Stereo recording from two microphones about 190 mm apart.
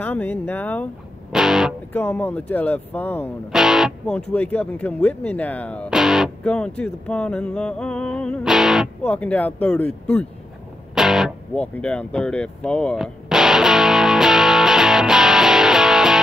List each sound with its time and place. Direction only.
0.0 s speech: 10° left (ahead or behind)
1.3 s speech: centre (ahead or behind)
1.9 s speech: 10° left (ahead or behind)
3.5 s speech: centre (ahead or behind)
11.0 s music: centre (ahead or behind)